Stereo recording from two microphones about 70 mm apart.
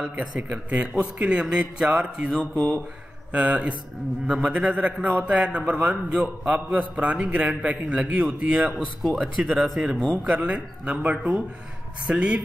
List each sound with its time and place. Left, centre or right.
0.4 s a man's voice: centre
3.3 s a man's voice: centre